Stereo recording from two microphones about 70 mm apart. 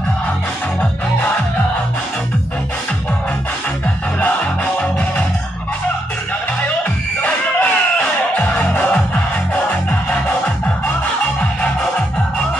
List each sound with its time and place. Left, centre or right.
4.2 s music: left
7.2 s music: left